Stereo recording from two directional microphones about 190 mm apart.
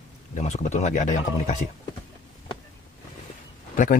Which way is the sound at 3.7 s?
45° left (ahead or behind).